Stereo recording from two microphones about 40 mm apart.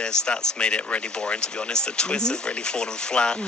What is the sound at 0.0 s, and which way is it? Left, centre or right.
Speech, left.